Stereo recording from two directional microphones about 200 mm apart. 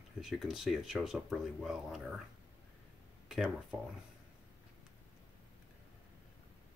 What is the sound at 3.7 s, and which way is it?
Speech, 10° right (ahead or behind).